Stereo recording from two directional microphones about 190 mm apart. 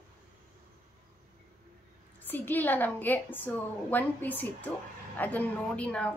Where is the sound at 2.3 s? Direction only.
10° left (ahead or behind).